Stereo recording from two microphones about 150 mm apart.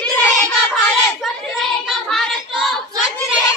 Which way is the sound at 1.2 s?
Centre (ahead or behind).